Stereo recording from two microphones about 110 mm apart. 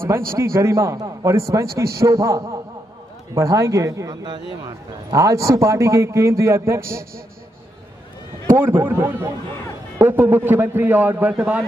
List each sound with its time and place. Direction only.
0.0 s a man's voice: 25° right (ahead or behind)
8.7 s a man's voice: 20° right (ahead or behind)